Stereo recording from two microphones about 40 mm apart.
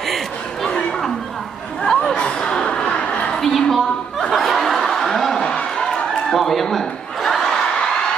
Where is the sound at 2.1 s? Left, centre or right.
Left.